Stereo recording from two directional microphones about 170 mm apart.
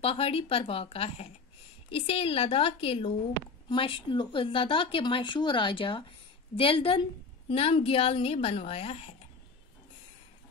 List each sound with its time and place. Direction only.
0.0 s a woman's voice: 35° left (ahead or behind)